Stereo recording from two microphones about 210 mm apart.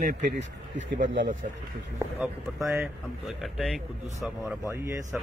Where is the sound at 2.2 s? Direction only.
5° right (ahead or behind).